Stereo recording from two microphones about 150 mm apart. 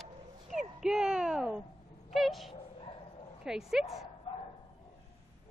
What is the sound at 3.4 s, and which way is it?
Speech, 5° right (ahead or behind).